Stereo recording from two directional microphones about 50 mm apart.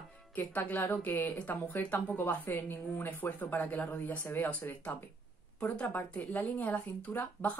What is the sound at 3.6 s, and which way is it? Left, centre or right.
Speech, left.